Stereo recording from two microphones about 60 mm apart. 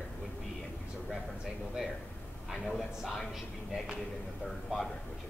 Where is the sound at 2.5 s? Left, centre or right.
Centre.